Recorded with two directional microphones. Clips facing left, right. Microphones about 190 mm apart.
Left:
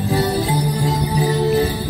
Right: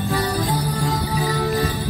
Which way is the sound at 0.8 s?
20° left (ahead or behind).